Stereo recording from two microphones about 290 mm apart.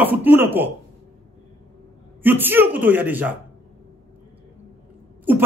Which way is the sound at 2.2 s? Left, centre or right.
Centre.